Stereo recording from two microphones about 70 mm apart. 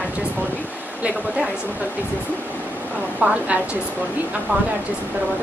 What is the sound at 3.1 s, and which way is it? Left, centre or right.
Speech, centre.